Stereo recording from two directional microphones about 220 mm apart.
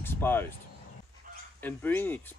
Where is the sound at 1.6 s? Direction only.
10° left (ahead or behind).